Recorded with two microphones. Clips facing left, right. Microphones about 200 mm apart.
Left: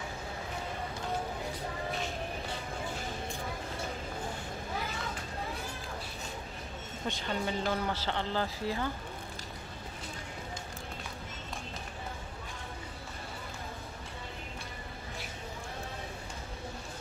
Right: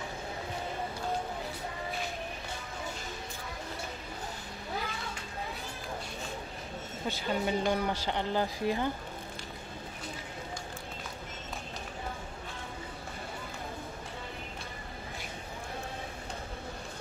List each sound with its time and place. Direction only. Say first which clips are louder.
7.1 s speech: right 3 dB; 15° right (ahead or behind)